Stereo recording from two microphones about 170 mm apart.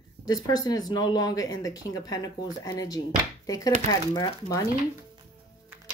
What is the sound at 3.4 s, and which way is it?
Chopping, 20° left (ahead or behind).